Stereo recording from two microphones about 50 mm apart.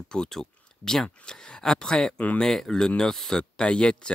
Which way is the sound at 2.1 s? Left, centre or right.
Left.